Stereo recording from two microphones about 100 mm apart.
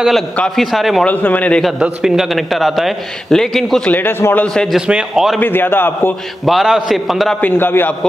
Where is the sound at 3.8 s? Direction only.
20° left (ahead or behind).